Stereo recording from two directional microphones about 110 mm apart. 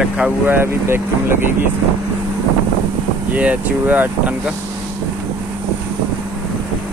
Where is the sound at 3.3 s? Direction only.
10° right (ahead or behind).